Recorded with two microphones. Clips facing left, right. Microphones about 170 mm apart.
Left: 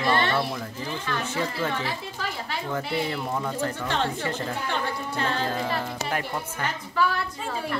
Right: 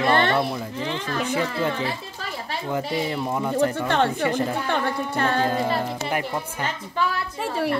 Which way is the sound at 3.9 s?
60° right (ahead or behind).